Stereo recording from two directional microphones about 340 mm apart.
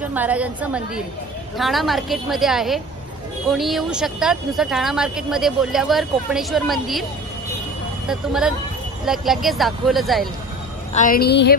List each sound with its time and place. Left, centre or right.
0.0 s speech: centre
8.1 s speech: centre
10.9 s a woman's voice: left